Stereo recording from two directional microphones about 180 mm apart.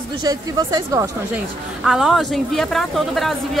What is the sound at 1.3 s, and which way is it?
A woman's voice, 5° right (ahead or behind).